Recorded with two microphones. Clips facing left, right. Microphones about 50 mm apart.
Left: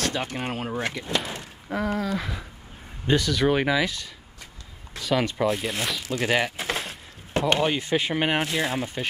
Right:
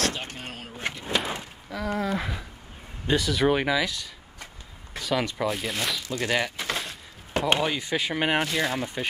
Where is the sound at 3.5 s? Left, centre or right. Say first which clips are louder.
Left 2 dB; centre.